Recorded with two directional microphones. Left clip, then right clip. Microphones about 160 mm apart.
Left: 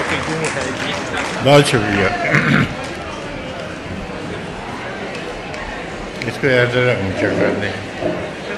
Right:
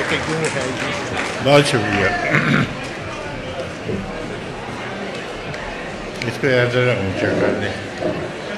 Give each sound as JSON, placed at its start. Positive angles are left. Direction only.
{"t": 1.4, "sound": "a man's voice", "side_deg": 10}
{"t": 6.4, "sound": "a man's voice", "side_deg": 0}